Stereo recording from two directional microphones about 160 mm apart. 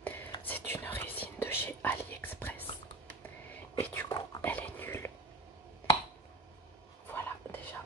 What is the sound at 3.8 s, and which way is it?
Whispering, 10° left (ahead or behind).